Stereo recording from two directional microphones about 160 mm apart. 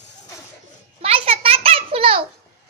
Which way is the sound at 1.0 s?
35° right (ahead or behind).